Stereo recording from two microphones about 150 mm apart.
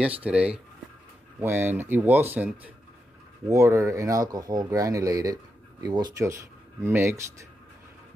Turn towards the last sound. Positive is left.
turn(degrees=-15)  # may be behind; listen again after turning